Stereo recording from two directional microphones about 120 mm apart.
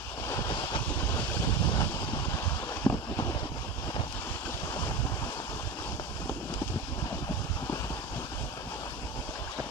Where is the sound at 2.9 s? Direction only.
20° left (ahead or behind).